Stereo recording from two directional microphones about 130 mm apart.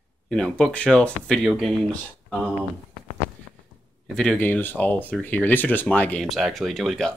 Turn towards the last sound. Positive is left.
turn(degrees=0)  # may be behind; listen again after turning